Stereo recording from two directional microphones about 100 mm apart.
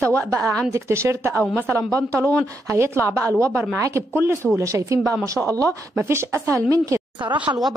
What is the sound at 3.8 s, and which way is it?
A woman's voice, 30° right (ahead or behind).